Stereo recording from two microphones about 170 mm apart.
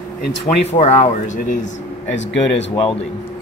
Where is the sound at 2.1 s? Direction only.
90° left.